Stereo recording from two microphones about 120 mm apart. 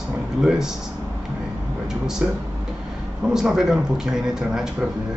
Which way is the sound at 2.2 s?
5° right (ahead or behind).